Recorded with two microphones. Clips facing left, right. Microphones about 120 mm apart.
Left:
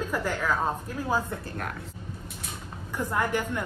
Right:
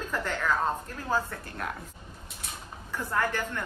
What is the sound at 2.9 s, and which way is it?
Speech, 15° left (ahead or behind).